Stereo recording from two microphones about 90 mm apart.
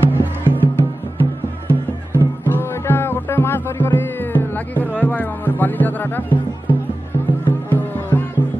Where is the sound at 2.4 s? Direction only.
25° left (ahead or behind).